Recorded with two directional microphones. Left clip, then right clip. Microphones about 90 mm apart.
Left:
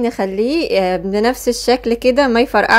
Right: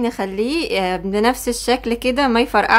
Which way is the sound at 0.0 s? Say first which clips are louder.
Left 4 dB; 30° left (ahead or behind).